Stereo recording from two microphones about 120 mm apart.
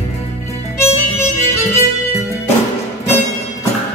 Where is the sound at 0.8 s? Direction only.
25° left (ahead or behind).